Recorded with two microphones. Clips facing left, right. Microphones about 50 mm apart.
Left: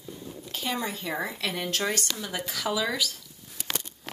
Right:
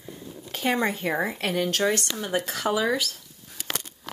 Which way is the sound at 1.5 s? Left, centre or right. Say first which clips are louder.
Right 7 dB; right.